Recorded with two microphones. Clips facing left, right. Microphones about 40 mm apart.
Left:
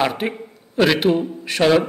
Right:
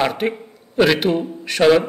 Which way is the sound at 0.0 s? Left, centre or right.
Centre.